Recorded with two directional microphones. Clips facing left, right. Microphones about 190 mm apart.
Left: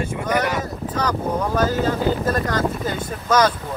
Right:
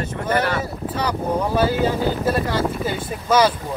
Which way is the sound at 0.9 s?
10° right (ahead or behind).